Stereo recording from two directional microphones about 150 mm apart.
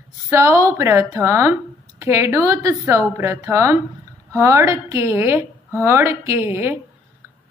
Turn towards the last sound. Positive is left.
turn(degrees=-15)  # may be behind; listen again after turning